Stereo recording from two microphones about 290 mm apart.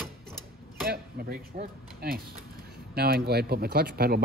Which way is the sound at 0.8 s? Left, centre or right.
Right.